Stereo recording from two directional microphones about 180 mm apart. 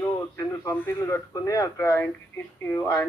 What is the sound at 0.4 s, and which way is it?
Speech, 15° left (ahead or behind).